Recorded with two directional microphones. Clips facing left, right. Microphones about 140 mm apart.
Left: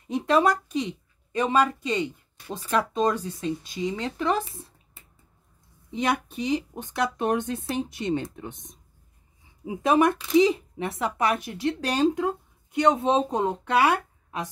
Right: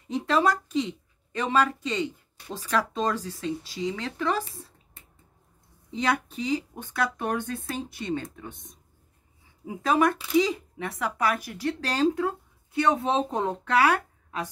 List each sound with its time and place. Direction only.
0.1 s speech: 15° left (ahead or behind)
6.0 s speech: 20° left (ahead or behind)
9.8 s speech: 20° left (ahead or behind)